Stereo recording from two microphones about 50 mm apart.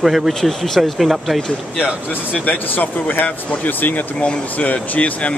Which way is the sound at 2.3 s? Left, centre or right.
Left.